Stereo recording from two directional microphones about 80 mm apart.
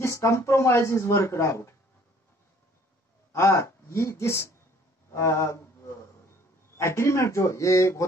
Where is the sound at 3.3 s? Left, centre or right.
Left.